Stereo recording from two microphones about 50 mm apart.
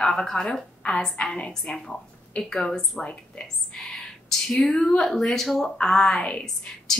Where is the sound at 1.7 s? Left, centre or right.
Left.